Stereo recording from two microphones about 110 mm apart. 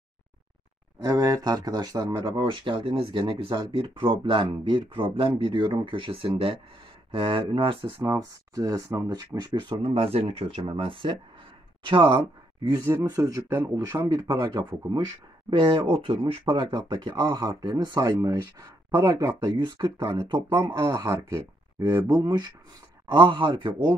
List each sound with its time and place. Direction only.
1.0 s speech: 35° right (ahead or behind); by 7.9 s 55° right (ahead or behind)
8.0 s speech: 30° right (ahead or behind); by 12.2 s 50° right (ahead or behind)
12.8 s speech: 25° right (ahead or behind)
13.9 s speech: 40° right (ahead or behind)
15.6 s speech: 55° right (ahead or behind); by 19.5 s 30° right (ahead or behind)
19.5 s speech: 45° right (ahead or behind)
20.7 s speech: 30° right (ahead or behind); by 24.0 s 45° right (ahead or behind)